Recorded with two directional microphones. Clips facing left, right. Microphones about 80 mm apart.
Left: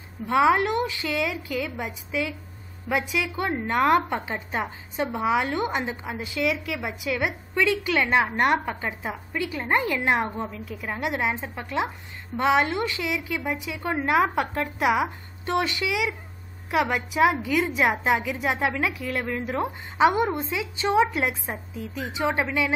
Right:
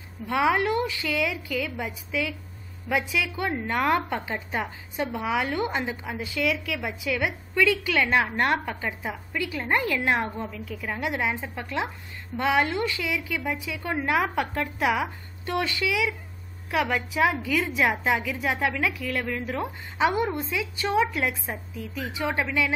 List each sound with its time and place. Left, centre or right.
0.3 s a woman's voice: centre